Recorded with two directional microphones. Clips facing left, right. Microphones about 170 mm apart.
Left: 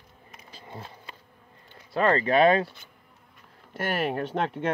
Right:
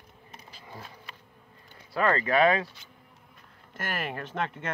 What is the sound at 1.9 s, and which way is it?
Speech, 25° left (ahead or behind).